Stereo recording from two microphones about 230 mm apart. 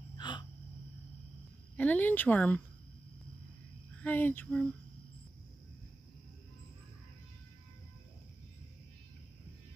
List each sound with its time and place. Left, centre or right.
0.2 s gasp: centre
1.8 s a woman's voice: centre
4.0 s a woman's voice: centre